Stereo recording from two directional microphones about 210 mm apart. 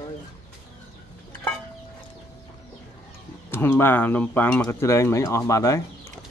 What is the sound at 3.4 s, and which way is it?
Speech, 10° left (ahead or behind).